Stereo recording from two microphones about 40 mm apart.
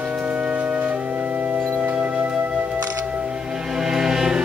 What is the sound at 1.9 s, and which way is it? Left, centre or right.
Music, centre.